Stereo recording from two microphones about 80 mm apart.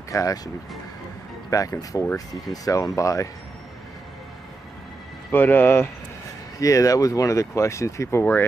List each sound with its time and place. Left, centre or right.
0.1 s speech: left
1.5 s speech: left
5.3 s speech: left
6.6 s speech: left